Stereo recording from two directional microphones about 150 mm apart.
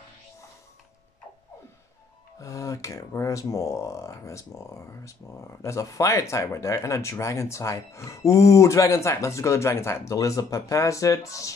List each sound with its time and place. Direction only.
2.3 s speech: 20° left (ahead or behind)